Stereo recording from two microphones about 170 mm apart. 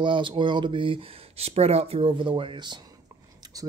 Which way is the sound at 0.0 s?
30° right (ahead or behind).